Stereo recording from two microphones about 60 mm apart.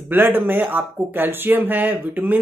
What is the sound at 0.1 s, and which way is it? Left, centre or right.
Speech, right.